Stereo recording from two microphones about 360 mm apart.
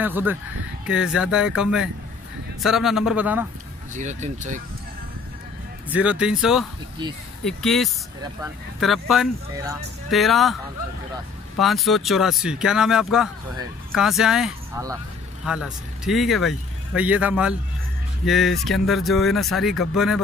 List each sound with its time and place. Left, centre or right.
0.0 s speech: centre
3.9 s speech: centre
5.9 s speech: centre